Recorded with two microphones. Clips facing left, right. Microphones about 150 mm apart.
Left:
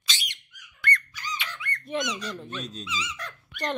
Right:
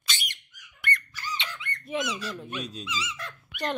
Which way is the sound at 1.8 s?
5° right (ahead or behind).